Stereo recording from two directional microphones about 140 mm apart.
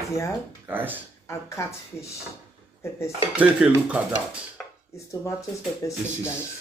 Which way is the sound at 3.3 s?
10° right (ahead or behind).